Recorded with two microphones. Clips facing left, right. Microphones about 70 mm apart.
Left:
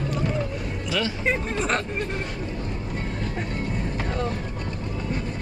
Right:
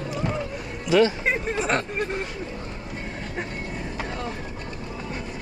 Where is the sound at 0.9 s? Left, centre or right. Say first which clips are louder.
Right 9 dB; right.